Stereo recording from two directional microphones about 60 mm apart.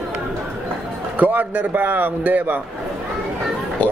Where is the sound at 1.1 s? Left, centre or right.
Right.